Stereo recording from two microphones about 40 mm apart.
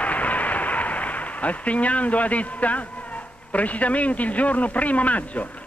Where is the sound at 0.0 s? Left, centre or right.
Left.